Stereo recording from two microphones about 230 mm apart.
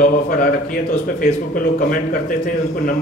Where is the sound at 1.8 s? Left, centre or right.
Left.